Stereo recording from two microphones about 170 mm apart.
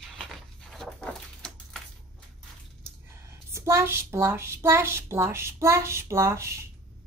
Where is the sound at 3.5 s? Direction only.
15° right (ahead or behind).